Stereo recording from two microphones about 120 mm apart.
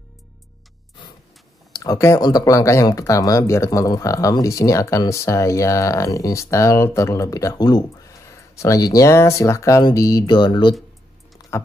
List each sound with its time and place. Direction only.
1.7 s speech: 30° left (ahead or behind)
10.2 s a sound: 40° left (ahead or behind)
11.5 s speech: 25° left (ahead or behind)